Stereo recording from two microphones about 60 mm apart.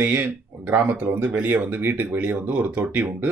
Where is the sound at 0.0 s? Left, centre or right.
Right.